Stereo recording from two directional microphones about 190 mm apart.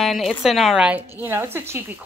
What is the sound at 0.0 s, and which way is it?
Speech, centre (ahead or behind).